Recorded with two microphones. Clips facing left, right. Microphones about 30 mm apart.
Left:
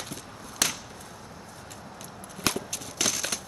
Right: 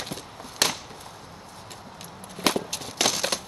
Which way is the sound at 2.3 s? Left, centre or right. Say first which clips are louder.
Right 5 dB; right.